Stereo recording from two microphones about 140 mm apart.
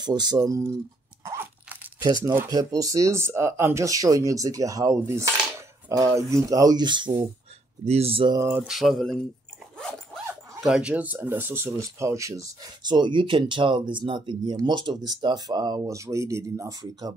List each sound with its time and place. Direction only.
0.0 s speech: 30° right (ahead or behind)
1.2 s crunch: 15° right (ahead or behind)
2.5 s speech: 25° right (ahead or behind)
7.8 s speech: 45° right (ahead or behind)
8.4 s speech: 15° right (ahead or behind)
8.6 s speech: centre (ahead or behind)
10.6 s speech: 5° right (ahead or behind); by 17.1 s 25° right (ahead or behind)